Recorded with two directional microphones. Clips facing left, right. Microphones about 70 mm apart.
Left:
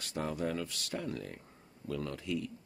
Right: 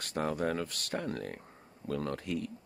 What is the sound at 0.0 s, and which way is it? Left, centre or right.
Speech, right.